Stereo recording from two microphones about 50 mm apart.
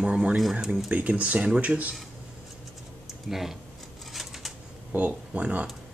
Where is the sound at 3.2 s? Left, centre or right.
Centre.